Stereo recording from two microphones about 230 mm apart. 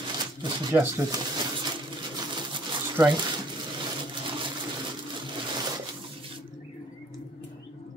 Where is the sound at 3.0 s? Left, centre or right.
Centre.